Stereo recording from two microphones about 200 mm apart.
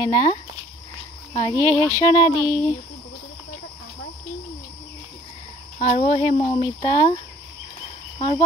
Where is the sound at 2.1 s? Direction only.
20° left (ahead or behind).